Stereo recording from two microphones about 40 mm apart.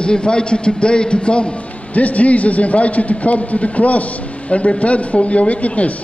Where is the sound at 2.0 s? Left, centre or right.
Left.